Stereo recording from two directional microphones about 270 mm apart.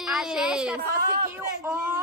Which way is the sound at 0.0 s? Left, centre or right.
Centre.